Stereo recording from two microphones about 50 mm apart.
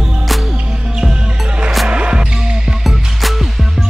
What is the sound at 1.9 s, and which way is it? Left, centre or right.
Music, right.